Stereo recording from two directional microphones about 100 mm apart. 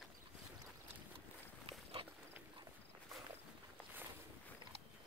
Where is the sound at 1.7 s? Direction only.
65° right (ahead or behind).